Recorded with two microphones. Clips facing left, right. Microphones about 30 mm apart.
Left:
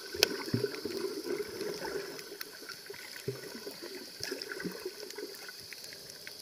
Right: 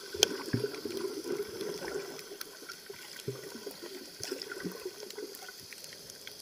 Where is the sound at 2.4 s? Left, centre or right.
Left.